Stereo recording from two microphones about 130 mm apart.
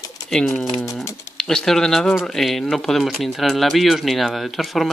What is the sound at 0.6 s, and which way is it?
Speech, 5° left (ahead or behind).